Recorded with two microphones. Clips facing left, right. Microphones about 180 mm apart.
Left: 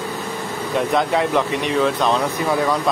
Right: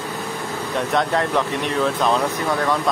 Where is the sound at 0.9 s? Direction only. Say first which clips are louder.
Left 1 dB; centre (ahead or behind).